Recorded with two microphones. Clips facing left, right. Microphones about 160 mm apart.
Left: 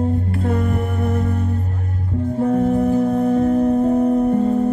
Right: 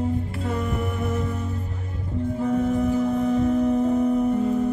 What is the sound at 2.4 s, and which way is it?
Music, 50° left (ahead or behind).